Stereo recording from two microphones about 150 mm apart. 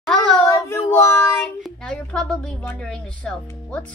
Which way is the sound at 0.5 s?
20° left (ahead or behind).